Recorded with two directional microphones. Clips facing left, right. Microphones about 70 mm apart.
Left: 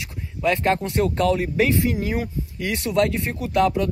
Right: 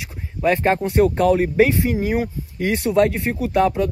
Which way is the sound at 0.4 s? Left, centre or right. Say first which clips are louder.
Right 3 dB; right.